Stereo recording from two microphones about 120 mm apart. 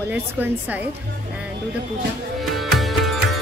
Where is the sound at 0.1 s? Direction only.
15° right (ahead or behind).